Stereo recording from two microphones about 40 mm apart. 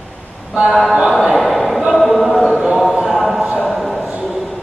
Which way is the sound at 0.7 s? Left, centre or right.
Centre.